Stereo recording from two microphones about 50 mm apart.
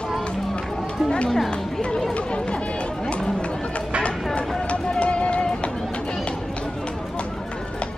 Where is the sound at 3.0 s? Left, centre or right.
Centre.